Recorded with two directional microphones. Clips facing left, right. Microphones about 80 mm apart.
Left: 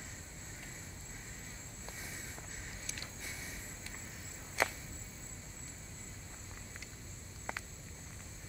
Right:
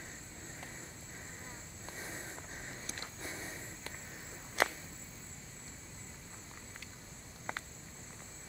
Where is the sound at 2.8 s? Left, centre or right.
Right.